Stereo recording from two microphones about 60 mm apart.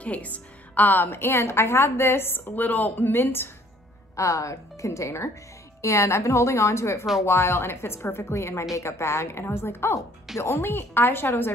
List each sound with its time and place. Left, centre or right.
0.0 s a woman's voice: left
2.5 s a woman's voice: left
4.2 s a woman's voice: left